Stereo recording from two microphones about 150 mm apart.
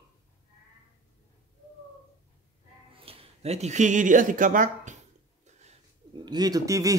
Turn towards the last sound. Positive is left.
turn(degrees=-20)  # may be behind; listen again after turning